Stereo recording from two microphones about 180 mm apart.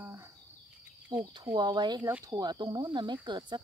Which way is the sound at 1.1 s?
25° right (ahead or behind).